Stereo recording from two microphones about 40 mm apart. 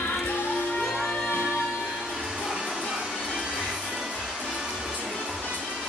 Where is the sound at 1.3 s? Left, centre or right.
Left.